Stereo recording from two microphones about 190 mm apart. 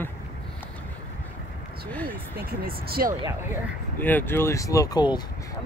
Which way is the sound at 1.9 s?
10° left (ahead or behind).